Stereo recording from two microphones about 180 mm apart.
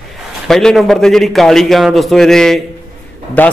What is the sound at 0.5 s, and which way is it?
A man's voice, 5° left (ahead or behind).